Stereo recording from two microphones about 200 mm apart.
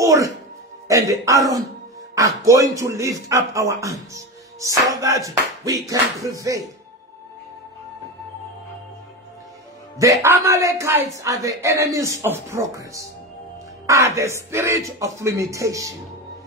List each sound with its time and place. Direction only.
0.0 s a man's voice: 15° right (ahead or behind)
10.2 s a man's voice: 15° right (ahead or behind)